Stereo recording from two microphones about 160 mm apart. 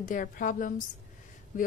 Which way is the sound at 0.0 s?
55° left (ahead or behind).